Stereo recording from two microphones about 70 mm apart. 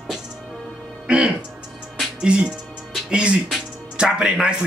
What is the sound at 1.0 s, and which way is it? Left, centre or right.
Music, centre.